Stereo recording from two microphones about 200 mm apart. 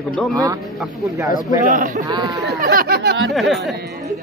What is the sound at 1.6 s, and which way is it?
Speech, 40° right (ahead or behind).